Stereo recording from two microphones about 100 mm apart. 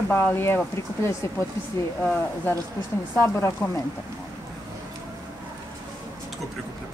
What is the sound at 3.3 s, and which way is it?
Speech, 30° left (ahead or behind).